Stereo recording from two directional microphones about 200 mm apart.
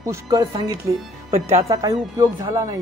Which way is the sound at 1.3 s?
35° right (ahead or behind).